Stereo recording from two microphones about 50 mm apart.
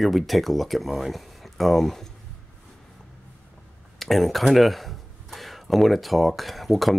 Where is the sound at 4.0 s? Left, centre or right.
Centre.